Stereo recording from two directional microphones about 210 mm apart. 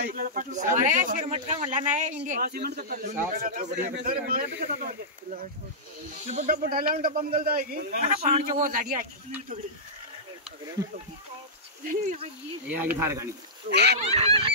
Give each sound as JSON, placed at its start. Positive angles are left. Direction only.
{"t": 0.0, "sound": "speech", "side_deg": -40}
{"t": 10.8, "sound": "speech", "side_deg": -15}
{"t": 11.8, "sound": "speech", "side_deg": -35}
{"t": 12.6, "sound": "speech", "side_deg": -10}
{"t": 13.7, "sound": "speech", "side_deg": -55}
{"t": 13.9, "sound": "goose", "side_deg": -30}